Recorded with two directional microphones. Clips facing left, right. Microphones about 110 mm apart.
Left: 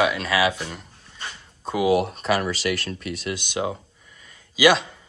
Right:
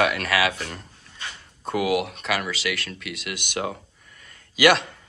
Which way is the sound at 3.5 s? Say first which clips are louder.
Even; 20° left (ahead or behind).